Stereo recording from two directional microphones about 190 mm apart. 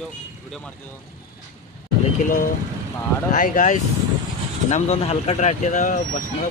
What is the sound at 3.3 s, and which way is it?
Speech, 45° left (ahead or behind).